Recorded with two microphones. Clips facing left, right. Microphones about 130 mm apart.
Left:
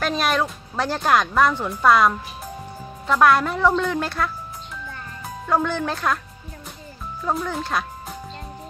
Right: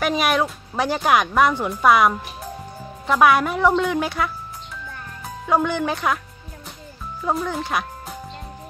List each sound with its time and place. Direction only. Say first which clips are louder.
0.0 s speech: right 2 dB; 5° right (ahead or behind)
5.5 s speech: right 2 dB; 5° right (ahead or behind)
7.2 s speech: right 1 dB; centre (ahead or behind)